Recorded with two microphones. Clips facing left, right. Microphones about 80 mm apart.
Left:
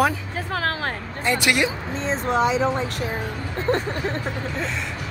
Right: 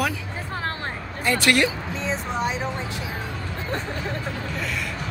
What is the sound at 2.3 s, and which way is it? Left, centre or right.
Speech, left.